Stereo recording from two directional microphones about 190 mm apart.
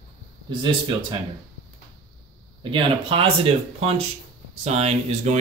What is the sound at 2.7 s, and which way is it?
Speech, 30° right (ahead or behind).